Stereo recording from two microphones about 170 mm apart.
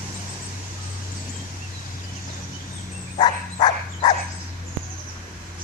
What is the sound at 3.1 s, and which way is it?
Dog, 25° left (ahead or behind).